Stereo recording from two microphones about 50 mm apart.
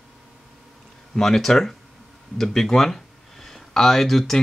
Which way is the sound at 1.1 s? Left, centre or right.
Centre.